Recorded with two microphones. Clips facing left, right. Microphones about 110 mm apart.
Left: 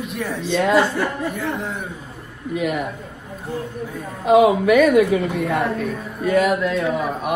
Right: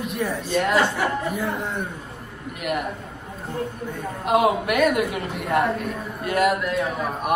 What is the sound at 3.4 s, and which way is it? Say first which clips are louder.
A woman's voice: left 1 dB; centre (ahead or behind).